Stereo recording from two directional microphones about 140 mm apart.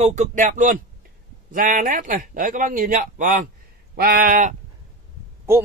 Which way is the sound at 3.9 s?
90° right.